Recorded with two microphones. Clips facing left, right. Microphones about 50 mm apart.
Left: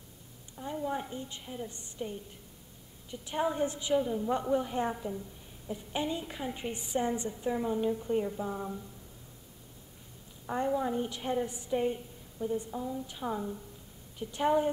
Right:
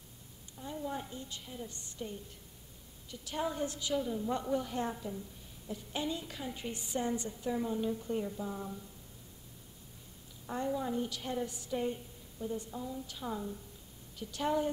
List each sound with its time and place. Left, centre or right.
0.6 s a woman's voice: left
10.4 s a woman's voice: left